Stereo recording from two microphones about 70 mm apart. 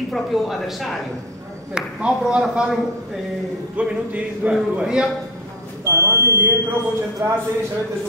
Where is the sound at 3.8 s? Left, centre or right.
Centre.